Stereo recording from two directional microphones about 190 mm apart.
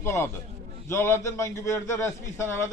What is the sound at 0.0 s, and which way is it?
A man's voice, 15° left (ahead or behind).